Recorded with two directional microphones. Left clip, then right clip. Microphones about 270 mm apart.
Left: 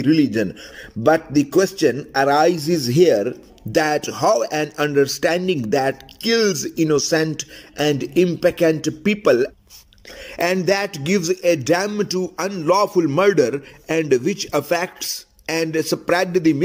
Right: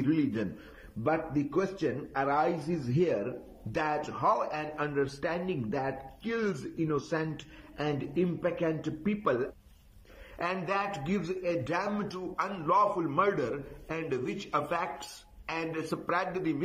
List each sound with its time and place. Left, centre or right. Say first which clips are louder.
0.0 s a man's voice: left 13 dB; left